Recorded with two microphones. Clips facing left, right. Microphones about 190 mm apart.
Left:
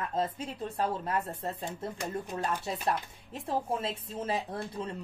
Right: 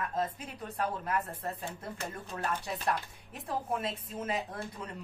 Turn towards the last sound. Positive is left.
turn(degrees=30)  # may be behind; listen again after turning